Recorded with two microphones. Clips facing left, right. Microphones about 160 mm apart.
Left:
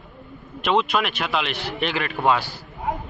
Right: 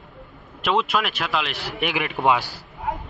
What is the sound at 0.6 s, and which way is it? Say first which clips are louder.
A man's voice: left 1 dB; 5° right (ahead or behind).